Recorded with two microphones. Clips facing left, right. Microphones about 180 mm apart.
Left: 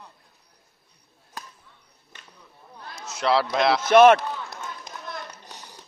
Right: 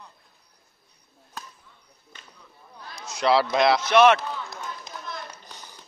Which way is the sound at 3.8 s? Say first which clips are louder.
Left 6 dB; 50° left (ahead or behind).